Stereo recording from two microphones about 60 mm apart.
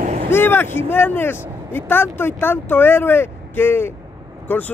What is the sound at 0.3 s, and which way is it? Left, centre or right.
Speech, left.